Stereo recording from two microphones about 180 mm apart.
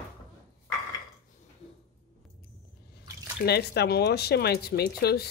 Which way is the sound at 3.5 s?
65° left (ahead or behind).